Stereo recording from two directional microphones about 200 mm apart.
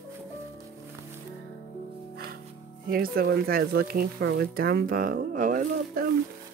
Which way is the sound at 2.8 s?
50° right (ahead or behind).